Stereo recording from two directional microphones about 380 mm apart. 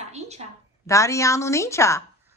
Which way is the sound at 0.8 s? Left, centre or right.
Centre.